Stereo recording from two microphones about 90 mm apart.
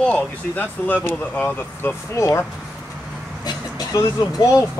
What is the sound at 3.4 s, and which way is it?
Vehicle, 45° left (ahead or behind).